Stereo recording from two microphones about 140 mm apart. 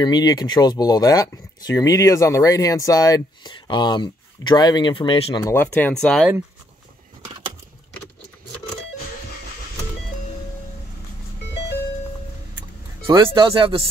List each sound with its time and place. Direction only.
0.0 s speech: 30° left (ahead or behind)
5.4 s speech: 15° left (ahead or behind)
13.0 s speech: 35° right (ahead or behind)